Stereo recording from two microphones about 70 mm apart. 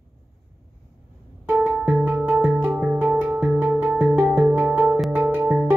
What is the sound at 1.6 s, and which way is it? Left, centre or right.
Music, centre.